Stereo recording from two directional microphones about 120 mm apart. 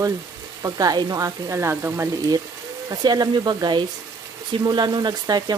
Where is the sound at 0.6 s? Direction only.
30° right (ahead or behind).